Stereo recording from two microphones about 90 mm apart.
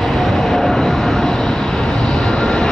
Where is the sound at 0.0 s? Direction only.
5° left (ahead or behind).